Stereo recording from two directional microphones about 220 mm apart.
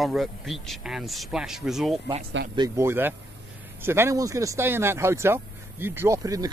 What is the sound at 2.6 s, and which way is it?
Speech, 10° right (ahead or behind).